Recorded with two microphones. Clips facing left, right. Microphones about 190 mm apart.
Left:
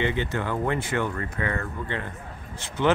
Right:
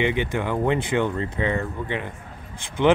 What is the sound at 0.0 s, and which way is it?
Speech, 15° right (ahead or behind).